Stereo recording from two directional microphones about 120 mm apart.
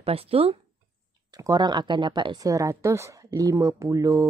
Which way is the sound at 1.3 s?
35° right (ahead or behind).